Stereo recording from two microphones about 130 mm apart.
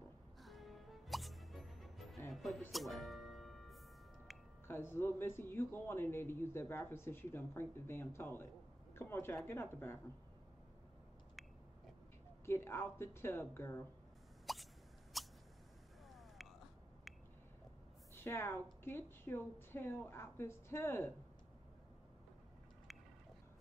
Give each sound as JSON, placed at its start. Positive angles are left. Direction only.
{"t": 0.4, "sound": "music", "side_deg": 0}
{"t": 4.6, "sound": "speech", "side_deg": 15}
{"t": 12.4, "sound": "speech", "side_deg": 20}
{"t": 14.4, "sound": "a sound", "side_deg": 0}
{"t": 18.1, "sound": "speech", "side_deg": 20}